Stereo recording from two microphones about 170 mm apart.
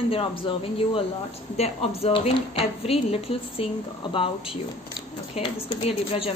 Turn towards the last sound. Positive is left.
turn(degrees=35)  # may be behind; listen again after turning